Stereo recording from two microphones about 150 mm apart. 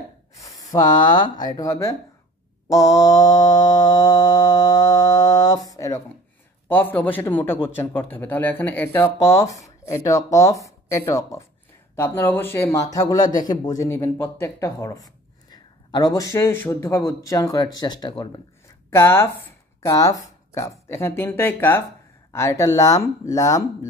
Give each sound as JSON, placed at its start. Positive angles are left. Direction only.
{"t": 0.7, "sound": "speech", "side_deg": 30}
{"t": 2.7, "sound": "mantra", "side_deg": 20}
{"t": 6.7, "sound": "a man's voice", "side_deg": 10}
{"t": 18.9, "sound": "a man's voice", "side_deg": 15}